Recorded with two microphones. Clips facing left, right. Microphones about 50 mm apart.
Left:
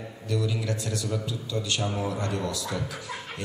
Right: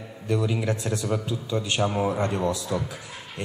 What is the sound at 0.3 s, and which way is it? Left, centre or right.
A man's voice, right.